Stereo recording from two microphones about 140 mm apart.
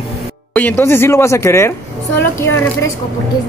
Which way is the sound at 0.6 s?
15° left (ahead or behind).